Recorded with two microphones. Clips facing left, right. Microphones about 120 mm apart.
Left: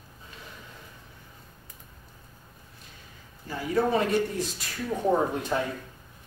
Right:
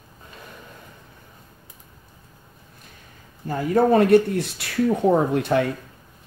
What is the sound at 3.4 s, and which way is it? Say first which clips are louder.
Speech: right 7 dB; 50° right (ahead or behind).